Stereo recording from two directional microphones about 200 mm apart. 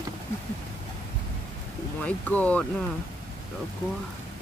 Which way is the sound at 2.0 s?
5° left (ahead or behind).